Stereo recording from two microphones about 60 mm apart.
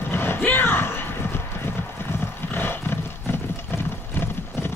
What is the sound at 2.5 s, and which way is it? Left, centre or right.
Roaring cats, left.